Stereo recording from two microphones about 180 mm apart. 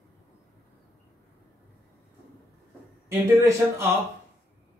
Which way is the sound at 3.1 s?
15° right (ahead or behind).